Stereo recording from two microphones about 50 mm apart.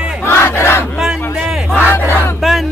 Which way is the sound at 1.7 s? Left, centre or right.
Left.